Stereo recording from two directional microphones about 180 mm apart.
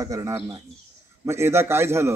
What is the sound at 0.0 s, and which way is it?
A man's voice, 20° right (ahead or behind).